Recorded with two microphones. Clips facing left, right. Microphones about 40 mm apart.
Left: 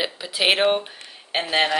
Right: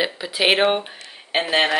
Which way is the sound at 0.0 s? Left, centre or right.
Centre.